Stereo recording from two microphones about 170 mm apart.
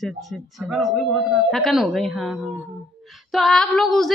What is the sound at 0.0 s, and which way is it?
A woman's voice, centre (ahead or behind).